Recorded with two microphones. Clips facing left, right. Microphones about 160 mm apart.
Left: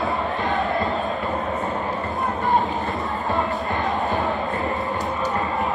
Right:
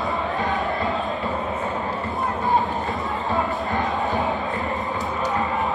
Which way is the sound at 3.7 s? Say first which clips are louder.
Even; 20° right (ahead or behind).